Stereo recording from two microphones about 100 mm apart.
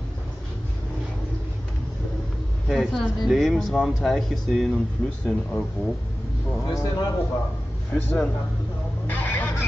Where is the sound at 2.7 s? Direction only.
5° left (ahead or behind).